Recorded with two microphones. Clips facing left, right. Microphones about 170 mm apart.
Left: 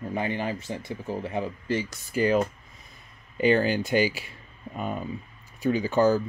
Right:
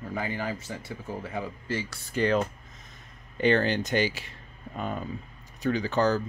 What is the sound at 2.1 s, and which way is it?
Speech, 10° left (ahead or behind).